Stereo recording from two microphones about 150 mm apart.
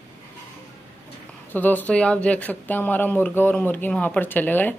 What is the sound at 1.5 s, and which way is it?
Speech, 10° left (ahead or behind).